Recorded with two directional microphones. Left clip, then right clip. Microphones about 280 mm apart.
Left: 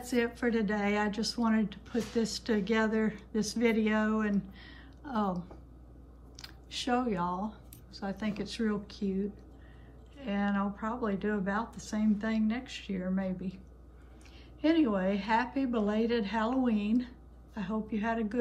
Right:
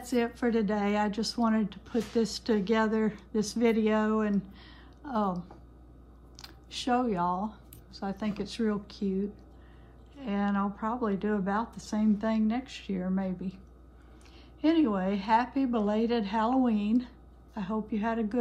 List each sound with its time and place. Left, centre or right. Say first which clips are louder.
0.0 s a woman's voice: right 1 dB; centre
14.6 s a woman's voice: right 1 dB; centre